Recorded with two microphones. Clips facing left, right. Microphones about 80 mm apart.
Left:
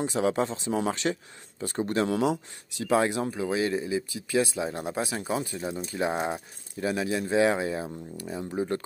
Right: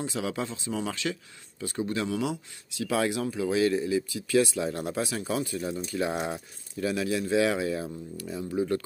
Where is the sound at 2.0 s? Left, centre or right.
Left.